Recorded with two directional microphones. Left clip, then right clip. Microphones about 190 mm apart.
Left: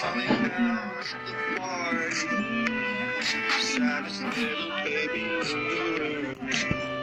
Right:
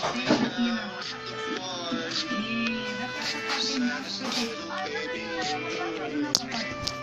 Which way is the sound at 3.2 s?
30° left (ahead or behind).